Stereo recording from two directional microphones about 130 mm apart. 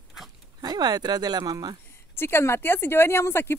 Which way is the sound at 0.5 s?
30° right (ahead or behind).